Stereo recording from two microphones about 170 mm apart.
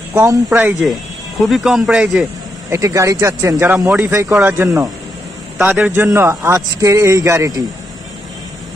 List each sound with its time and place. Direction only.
0.1 s a man's voice: 20° right (ahead or behind)
1.4 s speech: centre (ahead or behind)
2.7 s a man's voice: 20° right (ahead or behind)